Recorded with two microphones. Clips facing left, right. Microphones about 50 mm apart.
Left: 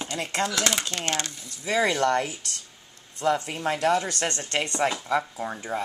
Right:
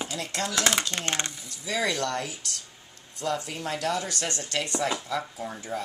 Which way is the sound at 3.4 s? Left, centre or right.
Left.